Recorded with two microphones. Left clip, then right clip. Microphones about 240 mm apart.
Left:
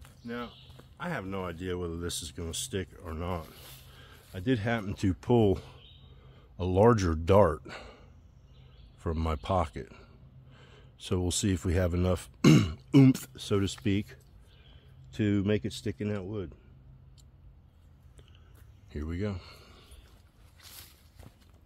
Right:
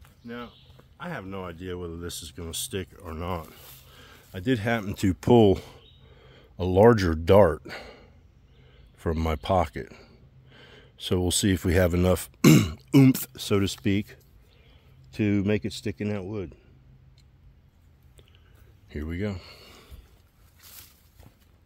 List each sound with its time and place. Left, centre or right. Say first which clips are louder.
0.0 s speech: even; centre
2.3 s speech: right 2 dB; right
18.9 s speech: right 4 dB; right
20.6 s walk: even; right